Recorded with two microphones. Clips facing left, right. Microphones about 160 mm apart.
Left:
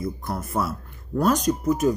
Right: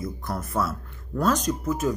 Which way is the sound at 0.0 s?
10° left (ahead or behind).